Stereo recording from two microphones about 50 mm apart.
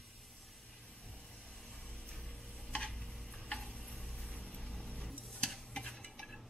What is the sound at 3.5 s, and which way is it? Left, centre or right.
Tick-tock, centre.